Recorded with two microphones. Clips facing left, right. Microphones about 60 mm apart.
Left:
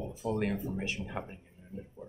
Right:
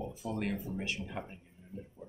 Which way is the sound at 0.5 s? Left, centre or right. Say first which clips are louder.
Left 2 dB; left.